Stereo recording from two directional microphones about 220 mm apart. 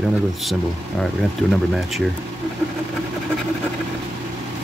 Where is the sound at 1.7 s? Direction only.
Centre (ahead or behind).